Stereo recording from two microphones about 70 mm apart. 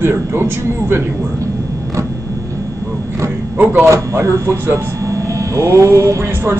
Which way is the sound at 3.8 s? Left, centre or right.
Right.